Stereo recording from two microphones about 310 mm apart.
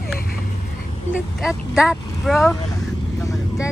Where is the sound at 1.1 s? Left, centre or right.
Centre.